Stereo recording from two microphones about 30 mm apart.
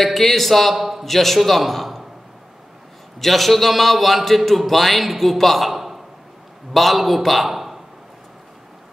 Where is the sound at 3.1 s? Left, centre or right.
Centre.